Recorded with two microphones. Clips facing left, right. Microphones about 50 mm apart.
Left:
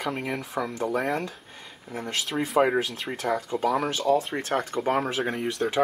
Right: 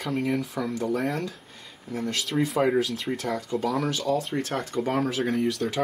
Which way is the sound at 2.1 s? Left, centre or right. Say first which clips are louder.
Left 2 dB; centre.